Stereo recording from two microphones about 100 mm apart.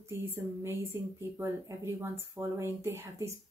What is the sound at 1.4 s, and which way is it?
Speech, 30° right (ahead or behind).